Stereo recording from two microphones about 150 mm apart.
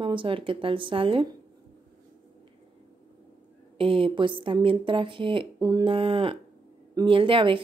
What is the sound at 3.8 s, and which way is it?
Speech, 35° right (ahead or behind).